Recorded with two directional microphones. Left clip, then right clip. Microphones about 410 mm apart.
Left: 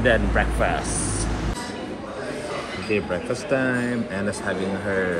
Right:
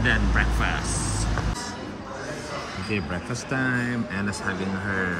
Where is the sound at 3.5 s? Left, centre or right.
Centre.